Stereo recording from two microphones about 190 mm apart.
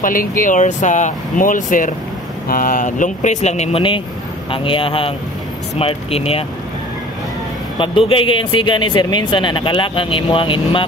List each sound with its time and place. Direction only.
0.0 s speech: 45° left (ahead or behind); by 6.4 s 30° left (ahead or behind)
8.1 s speech: 25° left (ahead or behind)